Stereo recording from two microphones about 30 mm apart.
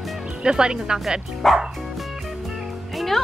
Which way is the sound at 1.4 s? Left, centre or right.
Centre.